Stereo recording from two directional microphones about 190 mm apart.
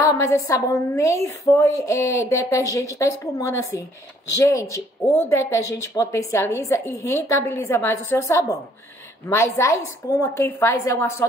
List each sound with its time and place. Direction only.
0.0 s a woman's voice: 15° left (ahead or behind)